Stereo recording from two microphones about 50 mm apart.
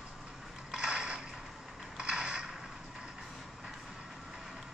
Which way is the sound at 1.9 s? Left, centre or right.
Centre.